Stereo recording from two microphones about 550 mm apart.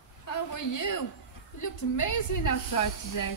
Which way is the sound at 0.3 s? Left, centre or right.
Left.